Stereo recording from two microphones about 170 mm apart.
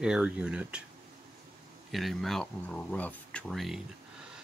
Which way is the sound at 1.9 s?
Centre (ahead or behind).